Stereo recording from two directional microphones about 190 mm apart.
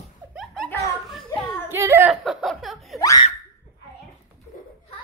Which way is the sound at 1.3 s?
20° left (ahead or behind).